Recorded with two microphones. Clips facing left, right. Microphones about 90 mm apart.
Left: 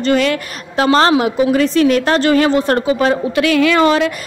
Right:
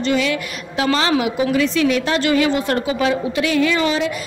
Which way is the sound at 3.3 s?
75° left (ahead or behind).